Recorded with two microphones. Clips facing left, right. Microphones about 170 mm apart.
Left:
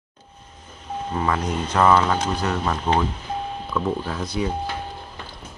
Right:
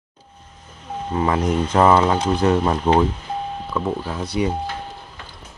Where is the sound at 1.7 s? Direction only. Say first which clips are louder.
Right 2 dB; 25° right (ahead or behind).